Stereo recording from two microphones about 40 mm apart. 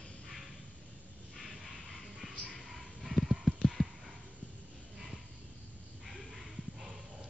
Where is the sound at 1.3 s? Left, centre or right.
Centre.